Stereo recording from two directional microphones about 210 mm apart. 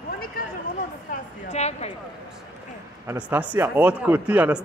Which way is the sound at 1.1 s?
30° left (ahead or behind).